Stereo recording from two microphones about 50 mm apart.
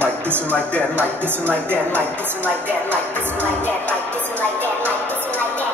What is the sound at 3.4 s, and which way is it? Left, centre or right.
Speech, right.